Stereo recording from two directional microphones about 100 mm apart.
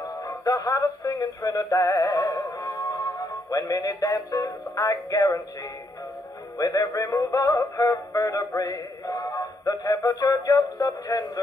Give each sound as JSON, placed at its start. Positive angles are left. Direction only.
{"t": 0.0, "sound": "music", "side_deg": 35}
{"t": 6.6, "sound": "music", "side_deg": 35}